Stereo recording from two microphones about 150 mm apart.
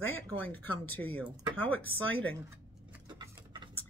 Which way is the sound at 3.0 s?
30° right (ahead or behind).